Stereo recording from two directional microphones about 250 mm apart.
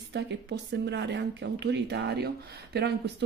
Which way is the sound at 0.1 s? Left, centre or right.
Right.